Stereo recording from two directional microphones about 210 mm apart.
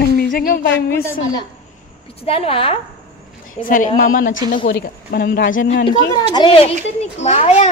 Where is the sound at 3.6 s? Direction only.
40° left (ahead or behind).